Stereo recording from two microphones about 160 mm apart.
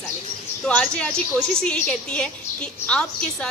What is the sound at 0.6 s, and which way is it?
A woman's voice, 5° left (ahead or behind).